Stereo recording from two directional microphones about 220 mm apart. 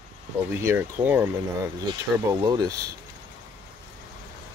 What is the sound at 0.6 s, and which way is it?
Speech, 10° right (ahead or behind).